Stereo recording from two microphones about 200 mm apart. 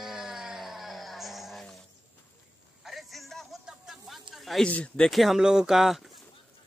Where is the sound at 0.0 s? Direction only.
Centre (ahead or behind).